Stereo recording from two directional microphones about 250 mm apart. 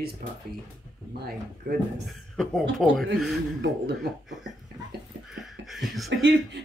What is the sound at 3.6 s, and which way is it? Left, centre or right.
Speech, right.